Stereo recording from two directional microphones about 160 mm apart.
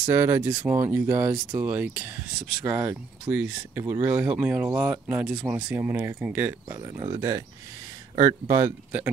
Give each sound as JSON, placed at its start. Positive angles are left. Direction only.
{"t": 0.1, "sound": "speech", "side_deg": -15}
{"t": 5.7, "sound": "speech", "side_deg": -15}
{"t": 6.8, "sound": "speech", "side_deg": -30}